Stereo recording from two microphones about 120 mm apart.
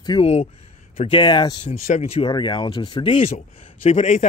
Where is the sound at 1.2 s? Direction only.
40° left (ahead or behind).